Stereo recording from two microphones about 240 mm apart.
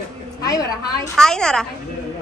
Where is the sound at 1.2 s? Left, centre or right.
Centre.